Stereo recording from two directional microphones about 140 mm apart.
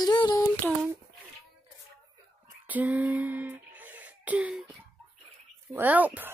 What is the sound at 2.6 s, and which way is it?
Throat clearing, 10° right (ahead or behind).